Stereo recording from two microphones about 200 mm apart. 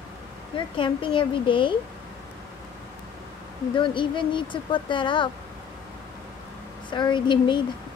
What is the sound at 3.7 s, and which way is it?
Speech, 25° left (ahead or behind).